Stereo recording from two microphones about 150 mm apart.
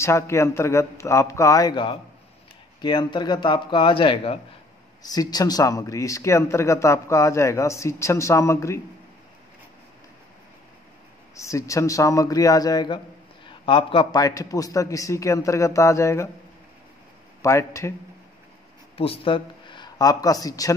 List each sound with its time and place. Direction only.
0.0 s speech: 20° left (ahead or behind); by 4.4 s 40° left (ahead or behind)
5.0 s speech: 25° left (ahead or behind)
11.3 s speech: 20° left (ahead or behind); by 14.0 s 35° left (ahead or behind)
14.1 s speech: 25° left (ahead or behind)
17.4 s speech: 20° left (ahead or behind)
18.9 s speech: 35° left (ahead or behind)